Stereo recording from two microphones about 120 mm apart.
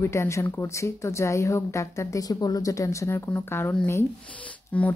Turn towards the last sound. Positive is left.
turn(degrees=10)  # may be behind; listen again after turning